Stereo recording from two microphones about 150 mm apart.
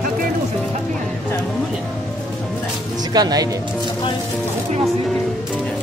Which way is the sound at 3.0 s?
25° right (ahead or behind).